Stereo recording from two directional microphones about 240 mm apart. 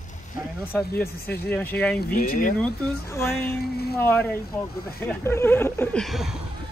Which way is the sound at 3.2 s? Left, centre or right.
Centre.